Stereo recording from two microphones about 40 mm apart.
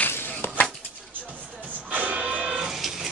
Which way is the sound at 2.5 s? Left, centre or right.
Centre.